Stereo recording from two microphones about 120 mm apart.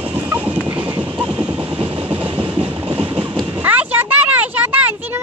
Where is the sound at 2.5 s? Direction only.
10° right (ahead or behind).